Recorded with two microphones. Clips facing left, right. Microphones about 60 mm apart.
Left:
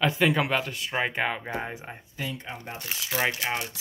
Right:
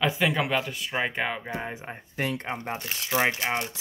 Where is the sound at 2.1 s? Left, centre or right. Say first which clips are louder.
Right 6 dB; right.